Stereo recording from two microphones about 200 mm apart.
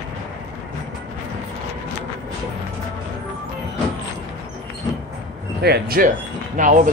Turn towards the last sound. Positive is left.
turn(degrees=-40)  # may be behind; listen again after turning